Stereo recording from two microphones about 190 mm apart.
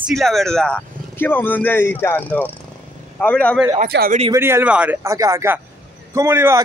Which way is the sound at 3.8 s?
50° right (ahead or behind).